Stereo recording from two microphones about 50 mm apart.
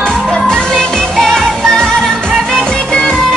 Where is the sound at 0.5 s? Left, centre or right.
Centre.